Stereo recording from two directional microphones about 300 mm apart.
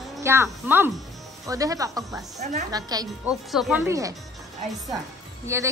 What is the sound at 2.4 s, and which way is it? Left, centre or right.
Speech, right.